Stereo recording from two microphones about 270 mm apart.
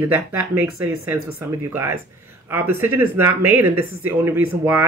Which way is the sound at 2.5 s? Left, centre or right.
Centre.